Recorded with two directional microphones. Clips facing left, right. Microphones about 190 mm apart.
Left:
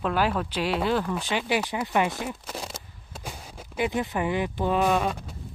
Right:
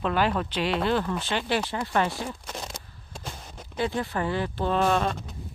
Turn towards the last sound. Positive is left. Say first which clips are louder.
# even
turn(degrees=10)  # may be behind; listen again after turning